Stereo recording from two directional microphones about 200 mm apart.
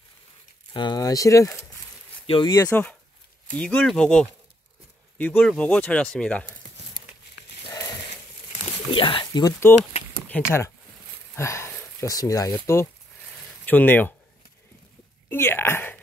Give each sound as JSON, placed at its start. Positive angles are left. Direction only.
{"t": 0.7, "sound": "speech", "side_deg": 20}
{"t": 8.9, "sound": "speech", "side_deg": 25}
{"t": 15.2, "sound": "speech", "side_deg": 10}